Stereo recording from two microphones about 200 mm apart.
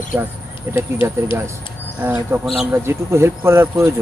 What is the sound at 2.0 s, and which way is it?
Speech, 10° right (ahead or behind).